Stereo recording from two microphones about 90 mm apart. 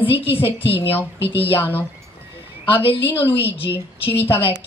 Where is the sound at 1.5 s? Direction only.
20° left (ahead or behind).